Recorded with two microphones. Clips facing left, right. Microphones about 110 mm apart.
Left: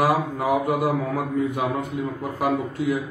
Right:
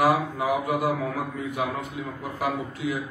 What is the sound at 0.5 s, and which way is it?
A man's voice, 50° left (ahead or behind).